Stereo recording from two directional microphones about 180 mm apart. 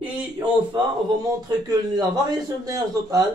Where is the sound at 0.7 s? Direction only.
25° right (ahead or behind).